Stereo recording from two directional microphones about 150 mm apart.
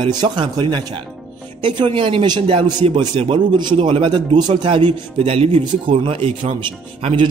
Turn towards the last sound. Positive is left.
turn(degrees=-35)  # may be behind; listen again after turning